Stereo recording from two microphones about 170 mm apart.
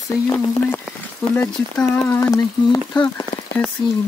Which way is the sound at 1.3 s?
15° left (ahead or behind).